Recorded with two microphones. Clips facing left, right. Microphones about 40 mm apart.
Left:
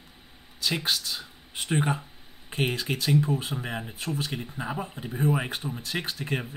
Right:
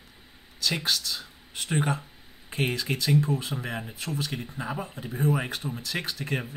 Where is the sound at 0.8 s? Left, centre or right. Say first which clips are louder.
Even; centre.